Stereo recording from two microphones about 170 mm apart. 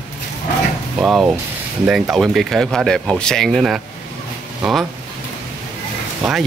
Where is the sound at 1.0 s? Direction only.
5° right (ahead or behind).